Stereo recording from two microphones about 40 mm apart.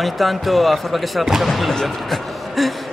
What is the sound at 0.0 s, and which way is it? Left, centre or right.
A man's voice, centre.